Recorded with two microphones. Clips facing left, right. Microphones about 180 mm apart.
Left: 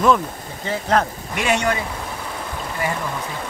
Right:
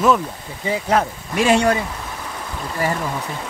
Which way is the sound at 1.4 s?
35° right (ahead or behind).